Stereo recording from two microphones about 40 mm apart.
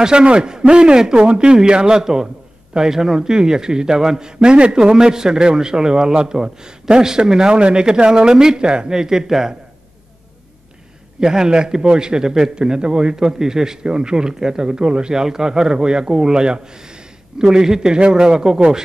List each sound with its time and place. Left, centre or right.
0.0 s a man's voice: right
11.1 s a man's voice: centre